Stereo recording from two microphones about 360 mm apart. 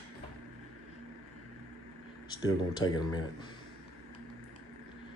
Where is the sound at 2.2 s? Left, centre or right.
Centre.